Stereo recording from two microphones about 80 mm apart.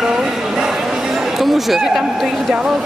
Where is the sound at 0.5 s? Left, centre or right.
Centre.